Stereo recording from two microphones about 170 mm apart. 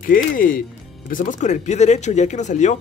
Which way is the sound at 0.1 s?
55° left (ahead or behind).